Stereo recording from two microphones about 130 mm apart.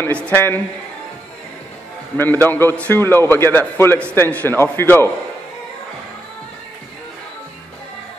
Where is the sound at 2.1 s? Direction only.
15° left (ahead or behind).